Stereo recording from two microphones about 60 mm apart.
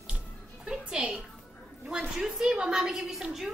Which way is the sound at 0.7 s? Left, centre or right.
Centre.